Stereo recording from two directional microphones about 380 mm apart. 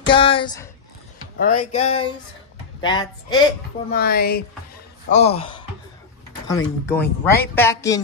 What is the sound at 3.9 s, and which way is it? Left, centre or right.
Speech, left.